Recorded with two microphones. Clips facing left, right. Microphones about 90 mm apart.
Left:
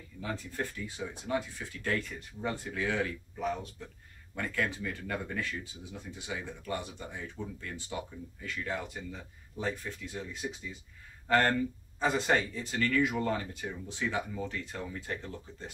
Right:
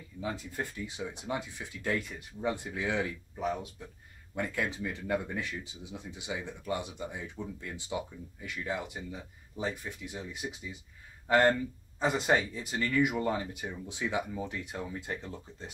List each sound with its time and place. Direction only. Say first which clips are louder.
0.2 s speech: even; 15° right (ahead or behind)
4.6 s speech: even; 20° right (ahead or behind)